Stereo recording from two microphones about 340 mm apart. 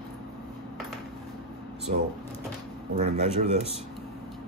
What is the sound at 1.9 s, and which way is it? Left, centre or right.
Speech, right.